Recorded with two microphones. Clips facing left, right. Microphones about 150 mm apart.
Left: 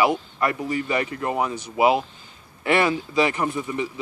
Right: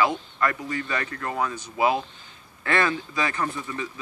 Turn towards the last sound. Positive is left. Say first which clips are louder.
# left 4 dB
turn(degrees=20)  # may be behind; listen again after turning